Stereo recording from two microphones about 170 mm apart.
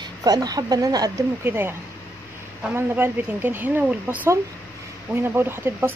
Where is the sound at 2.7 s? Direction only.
10° right (ahead or behind).